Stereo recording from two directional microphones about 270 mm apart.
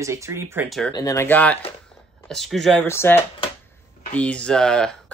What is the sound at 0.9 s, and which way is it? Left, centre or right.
Speech, centre.